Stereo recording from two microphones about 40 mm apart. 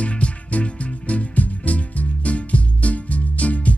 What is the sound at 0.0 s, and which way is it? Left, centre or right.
Music, left.